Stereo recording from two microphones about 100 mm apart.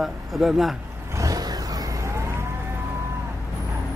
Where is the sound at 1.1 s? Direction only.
35° right (ahead or behind).